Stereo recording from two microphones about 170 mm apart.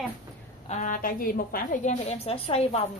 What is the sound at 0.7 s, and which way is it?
A woman's voice, 50° left (ahead or behind).